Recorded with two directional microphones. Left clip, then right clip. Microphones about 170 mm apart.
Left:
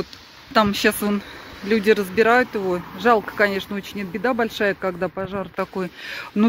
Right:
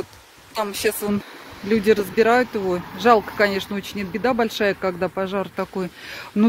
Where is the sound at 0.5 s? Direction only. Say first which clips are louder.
Left 5 dB; 5° right (ahead or behind).